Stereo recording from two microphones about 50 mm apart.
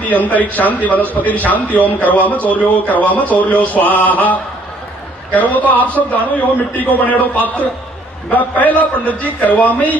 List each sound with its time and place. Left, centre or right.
0.0 s a man's voice: left
8.3 s a man's voice: left